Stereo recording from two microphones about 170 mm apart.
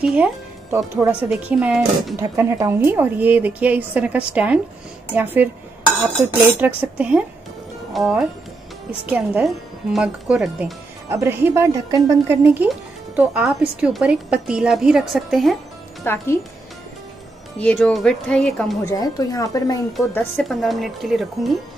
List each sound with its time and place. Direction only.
0.0 s a woman's voice: 10° right (ahead or behind)
6.6 s a woman's voice: 5° right (ahead or behind)
16.0 s a woman's voice: 15° left (ahead or behind)
17.6 s speech: 5° left (ahead or behind)
18.9 s speech: 20° left (ahead or behind)
20.3 s speech: centre (ahead or behind)